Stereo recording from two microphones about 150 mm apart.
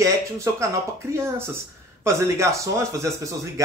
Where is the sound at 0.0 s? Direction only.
20° right (ahead or behind).